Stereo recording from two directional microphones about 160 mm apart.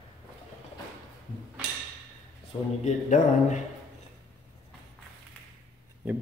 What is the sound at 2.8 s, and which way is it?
Speech, 50° left (ahead or behind).